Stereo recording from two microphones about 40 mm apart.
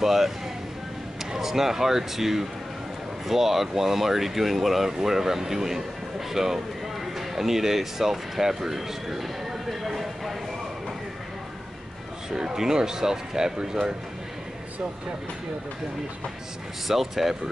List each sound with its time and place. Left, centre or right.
0.0 s speech: centre
1.3 s speech: centre
9.7 s a sound: centre
12.3 s speech: centre
16.8 s speech: centre